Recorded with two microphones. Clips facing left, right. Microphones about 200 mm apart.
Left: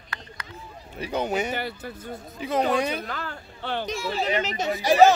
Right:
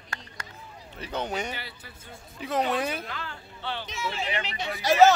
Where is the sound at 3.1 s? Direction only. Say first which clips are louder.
Left 4 dB; 45° left (ahead or behind).